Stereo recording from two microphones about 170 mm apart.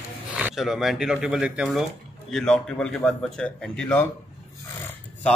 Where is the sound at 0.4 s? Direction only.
5° right (ahead or behind).